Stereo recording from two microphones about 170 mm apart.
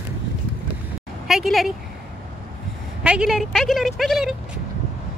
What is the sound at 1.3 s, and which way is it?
Speech, centre (ahead or behind).